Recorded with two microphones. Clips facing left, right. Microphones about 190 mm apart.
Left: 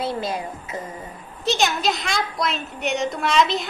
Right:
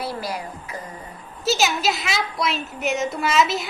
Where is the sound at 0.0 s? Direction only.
25° left (ahead or behind).